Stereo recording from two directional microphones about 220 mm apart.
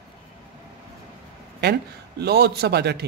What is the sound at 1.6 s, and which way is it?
A man's voice, 50° right (ahead or behind).